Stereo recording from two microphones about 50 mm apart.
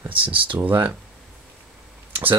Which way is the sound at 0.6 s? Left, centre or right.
Right.